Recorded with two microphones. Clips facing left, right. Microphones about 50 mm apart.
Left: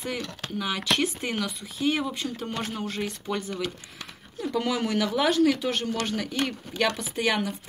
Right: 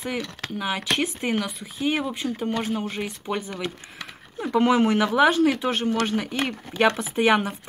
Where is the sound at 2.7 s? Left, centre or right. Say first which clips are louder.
Right 5 dB; right.